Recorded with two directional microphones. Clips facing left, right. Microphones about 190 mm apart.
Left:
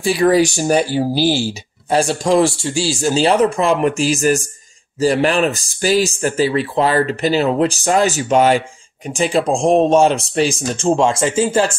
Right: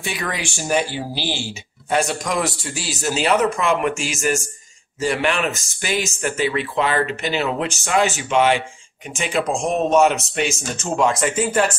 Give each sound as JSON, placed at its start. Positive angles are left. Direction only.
{"t": 0.0, "sound": "speech", "side_deg": 35}